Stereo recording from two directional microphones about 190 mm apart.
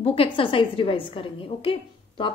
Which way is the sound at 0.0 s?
30° left (ahead or behind).